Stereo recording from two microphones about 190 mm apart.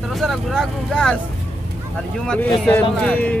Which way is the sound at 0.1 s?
Centre (ahead or behind).